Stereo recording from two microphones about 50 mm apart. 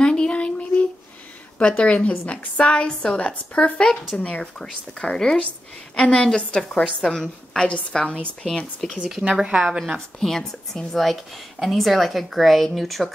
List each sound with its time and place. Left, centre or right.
0.0 s a sound: centre
1.6 s a woman's voice: left
9.0 s speech: centre
9.9 s speech: centre